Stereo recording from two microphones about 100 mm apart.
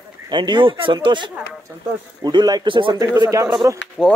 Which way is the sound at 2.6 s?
55° right (ahead or behind).